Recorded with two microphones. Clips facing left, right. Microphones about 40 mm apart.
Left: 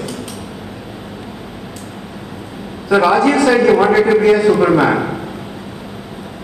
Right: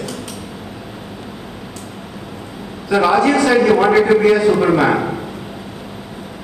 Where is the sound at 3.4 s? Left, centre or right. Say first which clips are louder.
Left 1 dB; centre.